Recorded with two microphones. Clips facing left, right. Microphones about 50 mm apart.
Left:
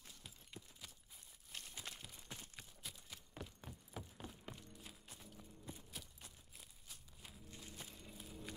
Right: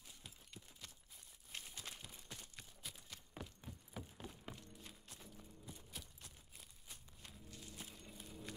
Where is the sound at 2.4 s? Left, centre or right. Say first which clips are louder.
Left 1 dB; centre.